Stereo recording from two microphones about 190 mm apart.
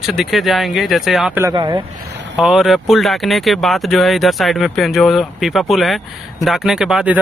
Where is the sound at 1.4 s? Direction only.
20° right (ahead or behind).